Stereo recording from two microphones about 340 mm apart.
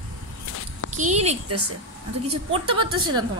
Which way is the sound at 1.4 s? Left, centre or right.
Right.